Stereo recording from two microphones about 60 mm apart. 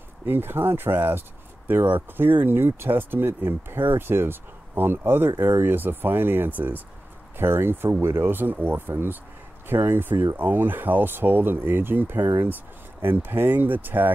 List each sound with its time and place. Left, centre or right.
0.2 s speech: right